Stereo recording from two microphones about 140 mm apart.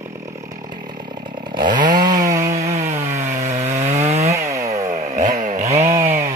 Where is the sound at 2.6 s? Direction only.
50° right (ahead or behind).